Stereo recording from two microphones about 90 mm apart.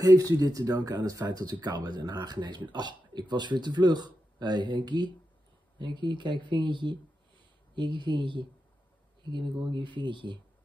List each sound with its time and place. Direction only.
0.0 s speech: 40° right (ahead or behind); by 10.4 s 60° right (ahead or behind)